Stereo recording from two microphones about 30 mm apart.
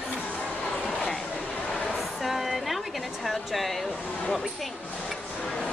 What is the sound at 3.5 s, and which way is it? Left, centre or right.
Speech, centre.